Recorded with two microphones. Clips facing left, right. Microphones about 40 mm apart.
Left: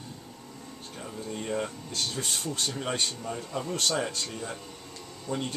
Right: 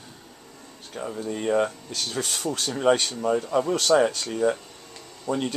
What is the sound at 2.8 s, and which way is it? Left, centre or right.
Speech, right.